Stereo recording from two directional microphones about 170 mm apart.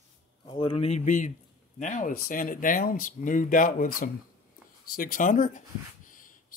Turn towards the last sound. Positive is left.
turn(degrees=55)  # may be behind; listen again after turning